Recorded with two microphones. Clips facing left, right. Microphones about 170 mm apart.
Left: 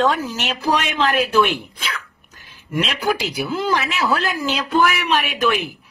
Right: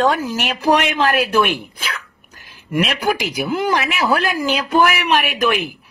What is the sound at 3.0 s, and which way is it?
A man's voice, 15° right (ahead or behind).